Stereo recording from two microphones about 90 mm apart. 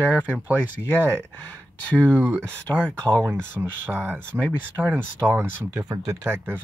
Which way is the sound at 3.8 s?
20° right (ahead or behind).